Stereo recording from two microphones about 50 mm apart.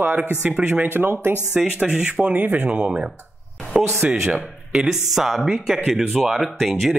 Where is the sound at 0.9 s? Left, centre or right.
Right.